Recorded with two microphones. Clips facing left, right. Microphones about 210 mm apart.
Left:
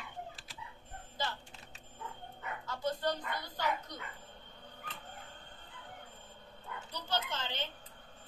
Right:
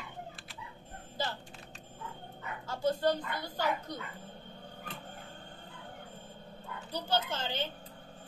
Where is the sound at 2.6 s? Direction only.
30° right (ahead or behind).